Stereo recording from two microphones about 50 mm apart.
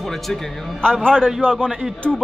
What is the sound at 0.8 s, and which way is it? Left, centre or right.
Music, centre.